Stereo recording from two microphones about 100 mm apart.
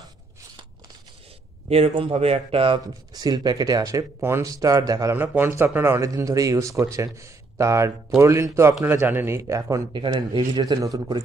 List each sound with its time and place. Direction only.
1.7 s speech: 80° right
3.1 s speech: 40° right (ahead or behind)
4.2 s speech: 25° right (ahead or behind)
5.1 s speech: 20° right (ahead or behind)
9.9 s speech: 50° right (ahead or behind)